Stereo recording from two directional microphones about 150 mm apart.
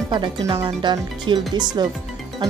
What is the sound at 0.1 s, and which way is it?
Speech, 30° right (ahead or behind).